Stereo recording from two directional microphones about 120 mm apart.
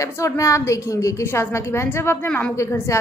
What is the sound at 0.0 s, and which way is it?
A woman's voice, 25° left (ahead or behind).